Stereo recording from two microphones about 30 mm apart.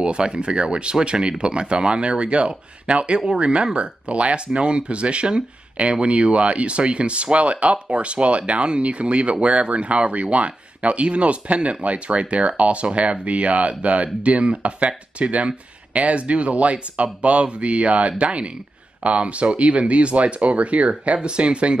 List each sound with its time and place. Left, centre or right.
0.0 s speech: right
21.3 s speech: right